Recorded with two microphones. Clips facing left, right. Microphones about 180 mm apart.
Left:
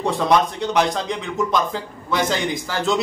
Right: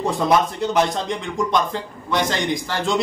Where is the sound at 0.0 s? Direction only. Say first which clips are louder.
Even; centre (ahead or behind).